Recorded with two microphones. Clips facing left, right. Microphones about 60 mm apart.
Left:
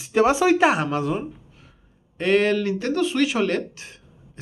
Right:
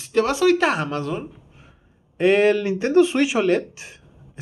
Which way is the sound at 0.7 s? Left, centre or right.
Centre.